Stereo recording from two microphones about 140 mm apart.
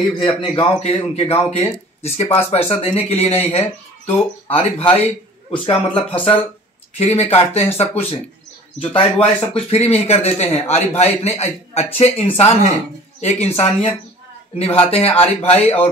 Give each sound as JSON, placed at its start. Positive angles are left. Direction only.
{"t": 0.4, "sound": "speech", "side_deg": 40}